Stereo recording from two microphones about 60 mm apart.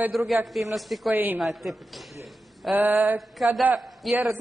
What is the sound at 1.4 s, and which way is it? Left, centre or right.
Speech, centre.